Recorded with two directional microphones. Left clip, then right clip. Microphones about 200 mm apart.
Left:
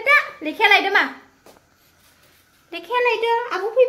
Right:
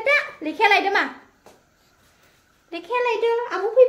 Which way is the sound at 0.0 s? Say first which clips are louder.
Left 3 dB; centre (ahead or behind).